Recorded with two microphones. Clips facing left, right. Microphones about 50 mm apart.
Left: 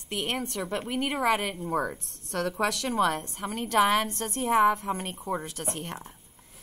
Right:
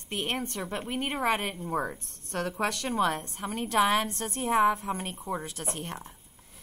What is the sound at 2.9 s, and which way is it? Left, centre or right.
A woman's voice, left.